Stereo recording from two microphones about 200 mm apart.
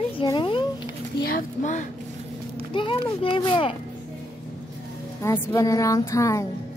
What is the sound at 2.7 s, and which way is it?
A child's voice, 25° left (ahead or behind).